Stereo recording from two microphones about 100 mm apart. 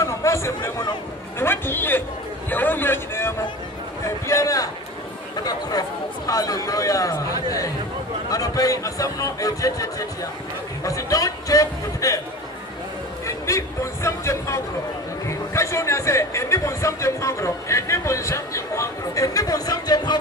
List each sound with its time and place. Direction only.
0.0 s a man's voice: 30° left (ahead or behind)
13.5 s a man's voice: 30° left (ahead or behind)